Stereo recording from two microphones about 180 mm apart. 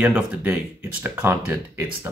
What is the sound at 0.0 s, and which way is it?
Speech, 10° right (ahead or behind).